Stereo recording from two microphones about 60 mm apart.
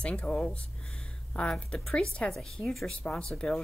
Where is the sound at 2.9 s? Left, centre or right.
Centre.